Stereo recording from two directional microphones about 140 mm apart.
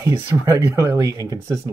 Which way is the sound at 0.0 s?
20° right (ahead or behind).